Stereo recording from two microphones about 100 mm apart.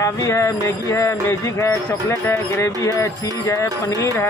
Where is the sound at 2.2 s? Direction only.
25° left (ahead or behind).